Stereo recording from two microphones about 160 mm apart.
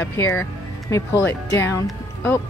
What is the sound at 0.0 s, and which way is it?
Speech, 20° left (ahead or behind).